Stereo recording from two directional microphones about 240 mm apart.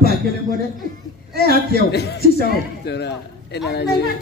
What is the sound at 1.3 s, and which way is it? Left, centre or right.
A man's voice, left.